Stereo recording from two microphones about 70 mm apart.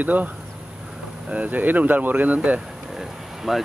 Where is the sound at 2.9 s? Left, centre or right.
Centre.